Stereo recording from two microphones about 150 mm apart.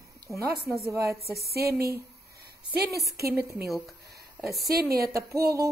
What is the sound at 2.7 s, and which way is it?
Speech, 90° right.